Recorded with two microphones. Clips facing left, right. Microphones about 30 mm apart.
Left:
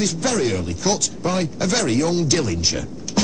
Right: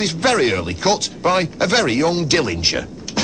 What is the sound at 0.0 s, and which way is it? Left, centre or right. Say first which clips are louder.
Speech: right 4 dB; right.